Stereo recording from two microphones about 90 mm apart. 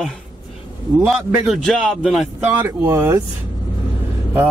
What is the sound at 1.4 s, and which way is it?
Speech, centre (ahead or behind).